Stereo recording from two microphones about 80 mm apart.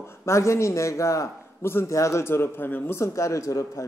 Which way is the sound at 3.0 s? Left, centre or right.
Left.